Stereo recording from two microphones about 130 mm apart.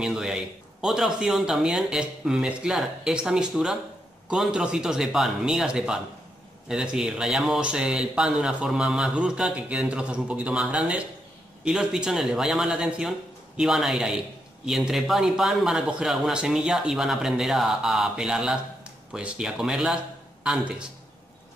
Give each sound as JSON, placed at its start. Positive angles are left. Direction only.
{"t": 0.0, "sound": "speech", "side_deg": -5}